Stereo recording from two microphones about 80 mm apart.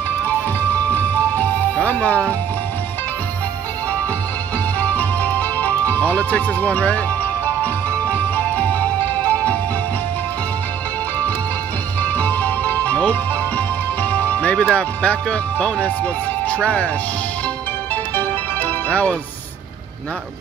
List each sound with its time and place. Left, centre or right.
0.9 s music: left
4.7 s music: centre
12.0 s music: left
14.2 s speech: centre
18.1 s music: centre